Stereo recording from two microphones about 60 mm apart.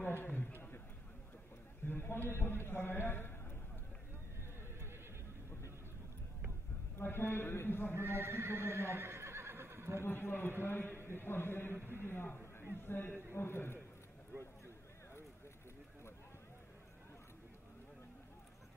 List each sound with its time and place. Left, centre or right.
0.0 s a sound: left
1.9 s a man's voice: left
7.0 s a man's voice: left
7.9 s speech: right
10.0 s a man's voice: left